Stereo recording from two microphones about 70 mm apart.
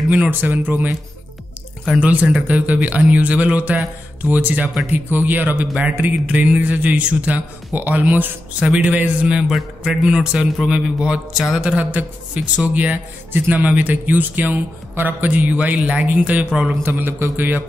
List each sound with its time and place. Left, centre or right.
0.1 s a man's voice: right
2.0 s a man's voice: centre
11.6 s a man's voice: centre
16.8 s a man's voice: right